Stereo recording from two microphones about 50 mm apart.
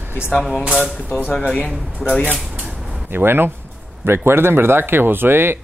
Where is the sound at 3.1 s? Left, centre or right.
Right.